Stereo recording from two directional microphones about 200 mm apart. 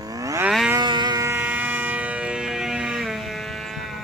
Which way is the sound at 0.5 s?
Centre (ahead or behind).